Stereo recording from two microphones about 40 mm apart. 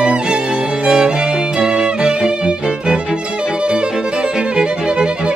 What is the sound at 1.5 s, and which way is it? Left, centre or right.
Music, centre.